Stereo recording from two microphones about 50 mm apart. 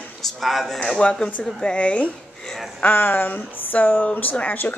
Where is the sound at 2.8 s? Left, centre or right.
Left.